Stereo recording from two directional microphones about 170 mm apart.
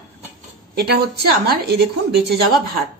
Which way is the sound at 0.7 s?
70° right (ahead or behind).